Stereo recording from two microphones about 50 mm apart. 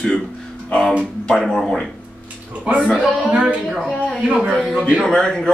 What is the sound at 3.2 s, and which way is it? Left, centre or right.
Speech, right.